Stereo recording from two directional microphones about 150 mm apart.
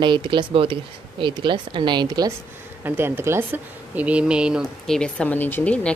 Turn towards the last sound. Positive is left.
turn(degrees=10)  # may be behind; listen again after turning